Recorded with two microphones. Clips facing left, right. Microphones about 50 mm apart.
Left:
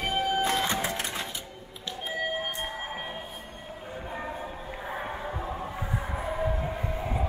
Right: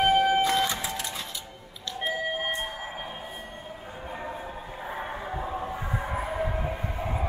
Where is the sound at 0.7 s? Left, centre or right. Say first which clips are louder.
Left 3 dB; left.